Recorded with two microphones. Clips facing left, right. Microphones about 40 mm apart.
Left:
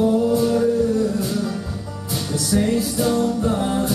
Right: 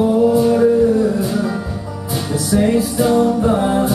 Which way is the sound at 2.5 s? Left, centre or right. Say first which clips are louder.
Right 5 dB; centre.